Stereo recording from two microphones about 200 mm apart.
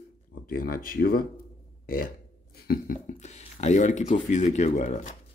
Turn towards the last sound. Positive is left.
turn(degrees=35)  # may be behind; listen again after turning